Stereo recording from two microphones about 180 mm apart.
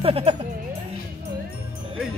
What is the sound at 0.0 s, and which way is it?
Speech, 30° right (ahead or behind).